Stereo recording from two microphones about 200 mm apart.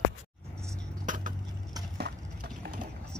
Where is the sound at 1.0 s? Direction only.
40° right (ahead or behind).